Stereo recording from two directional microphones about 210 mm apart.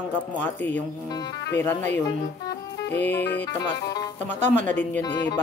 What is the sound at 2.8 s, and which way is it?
Music, 55° left (ahead or behind).